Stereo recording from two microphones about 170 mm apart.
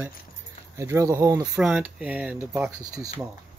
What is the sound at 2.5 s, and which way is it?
Speech, 20° right (ahead or behind).